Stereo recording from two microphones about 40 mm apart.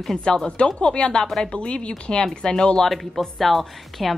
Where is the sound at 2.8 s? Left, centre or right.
Centre.